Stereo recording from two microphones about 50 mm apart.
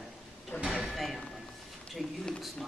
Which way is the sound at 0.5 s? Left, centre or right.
Left.